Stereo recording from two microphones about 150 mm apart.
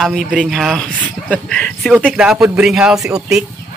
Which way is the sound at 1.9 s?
10° right (ahead or behind).